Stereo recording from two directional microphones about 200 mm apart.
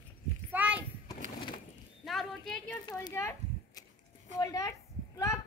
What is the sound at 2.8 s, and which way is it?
Speech, 20° left (ahead or behind).